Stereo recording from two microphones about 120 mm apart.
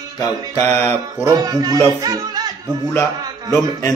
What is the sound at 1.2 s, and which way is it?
Speech, 30° right (ahead or behind).